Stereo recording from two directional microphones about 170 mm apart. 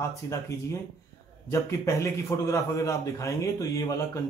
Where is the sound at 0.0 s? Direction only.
20° left (ahead or behind).